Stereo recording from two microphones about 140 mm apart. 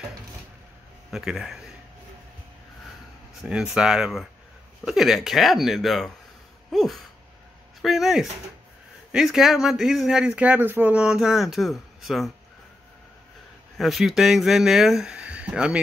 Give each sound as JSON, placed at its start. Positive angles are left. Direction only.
{"t": 1.1, "sound": "speech", "side_deg": 0}
{"t": 3.4, "sound": "speech", "side_deg": -5}
{"t": 13.7, "sound": "speech", "side_deg": 0}